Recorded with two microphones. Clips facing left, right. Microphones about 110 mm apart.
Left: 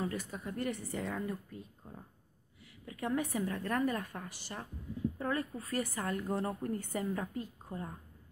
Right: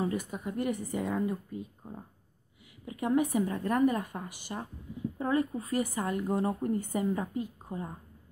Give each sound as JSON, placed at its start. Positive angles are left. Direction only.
{"t": 0.3, "sound": "a woman's voice", "side_deg": -15}